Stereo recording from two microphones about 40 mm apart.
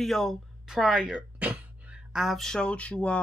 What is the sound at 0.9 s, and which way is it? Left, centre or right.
Speech, right.